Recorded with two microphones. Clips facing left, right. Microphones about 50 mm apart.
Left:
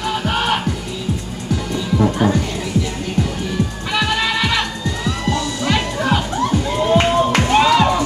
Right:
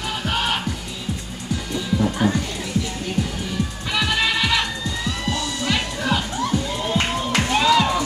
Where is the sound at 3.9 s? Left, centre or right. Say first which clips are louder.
Left 2 dB; left.